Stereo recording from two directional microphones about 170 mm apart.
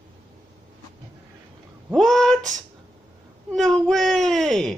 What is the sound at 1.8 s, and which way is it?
Speech, centre (ahead or behind).